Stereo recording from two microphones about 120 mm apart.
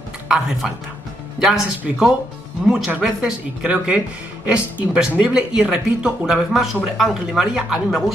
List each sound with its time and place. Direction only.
0.3 s speech: 5° right (ahead or behind)